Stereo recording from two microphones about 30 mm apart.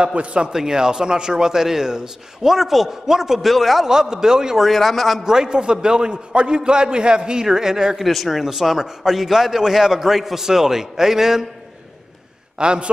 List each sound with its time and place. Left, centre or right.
0.0 s speech: right
0.5 s a man's voice: centre
3.4 s a man's voice: centre
3.8 s a man's voice: centre
4.6 s a man's voice: centre
5.2 s a man's voice: right
7.4 s a man's voice: centre
8.0 s a man's voice: centre
12.5 s speech: right